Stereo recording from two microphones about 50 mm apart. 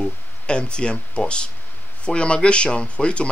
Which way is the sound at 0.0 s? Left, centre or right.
Centre.